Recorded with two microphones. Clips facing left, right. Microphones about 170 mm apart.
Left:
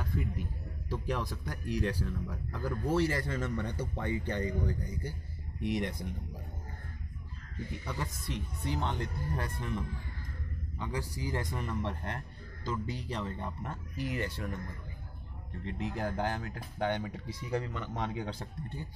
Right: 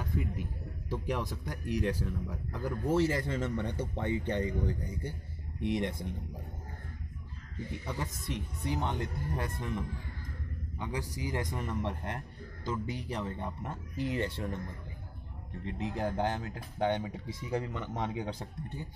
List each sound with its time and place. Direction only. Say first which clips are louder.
0.0 s a man's voice: right 1 dB; 20° right (ahead or behind)
7.8 s a man's voice: right 1 dB; 20° right (ahead or behind)
15.6 s a man's voice: right 1 dB; 20° right (ahead or behind)